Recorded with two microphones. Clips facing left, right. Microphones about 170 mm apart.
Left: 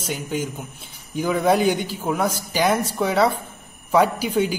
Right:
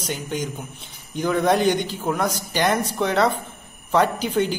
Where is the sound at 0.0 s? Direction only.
5° left (ahead or behind).